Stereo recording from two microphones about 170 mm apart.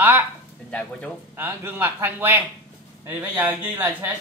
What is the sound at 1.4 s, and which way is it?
Speech, 15° right (ahead or behind).